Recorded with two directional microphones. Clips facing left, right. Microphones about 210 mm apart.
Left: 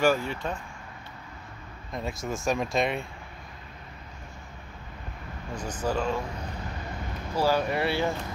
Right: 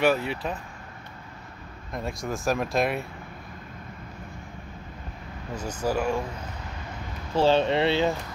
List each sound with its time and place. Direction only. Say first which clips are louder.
0.3 s speech: right 2 dB; 5° right (ahead or behind)
1.9 s speech: right 1 dB; centre (ahead or behind)
5.5 s speech: right 2 dB; 10° right (ahead or behind)
7.3 s speech: right 4 dB; 25° right (ahead or behind)